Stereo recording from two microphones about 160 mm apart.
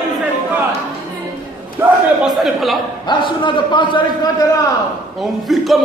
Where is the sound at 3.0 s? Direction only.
30° left (ahead or behind).